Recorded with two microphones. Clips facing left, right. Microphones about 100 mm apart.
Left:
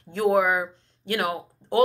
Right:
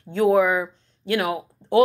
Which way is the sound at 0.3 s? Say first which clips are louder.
Right 2 dB; 30° left (ahead or behind).